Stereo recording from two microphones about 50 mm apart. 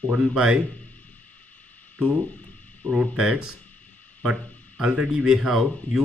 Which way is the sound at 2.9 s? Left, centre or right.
Centre.